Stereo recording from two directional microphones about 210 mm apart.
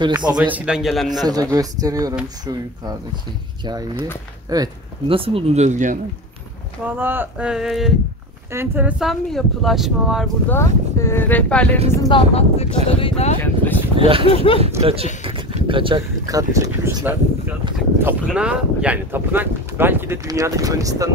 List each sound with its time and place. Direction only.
0.4 s speech: 5° right (ahead or behind)
1.2 s speech: 15° right (ahead or behind); by 5.9 s 35° right (ahead or behind)
7.0 s speech: 10° right (ahead or behind)
10.5 s speech: 15° left (ahead or behind)
11.9 s speech: 20° left (ahead or behind)
13.4 s speech: 10° left (ahead or behind)
13.9 s speech: 25° right (ahead or behind)
14.3 s speech: 25° left (ahead or behind)
14.8 s speech: 30° right (ahead or behind)